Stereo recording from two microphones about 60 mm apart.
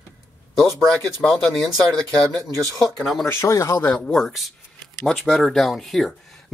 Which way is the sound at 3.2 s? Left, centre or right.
Left.